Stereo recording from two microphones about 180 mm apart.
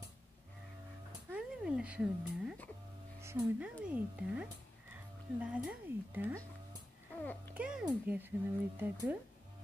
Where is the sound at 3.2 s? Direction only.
10° right (ahead or behind).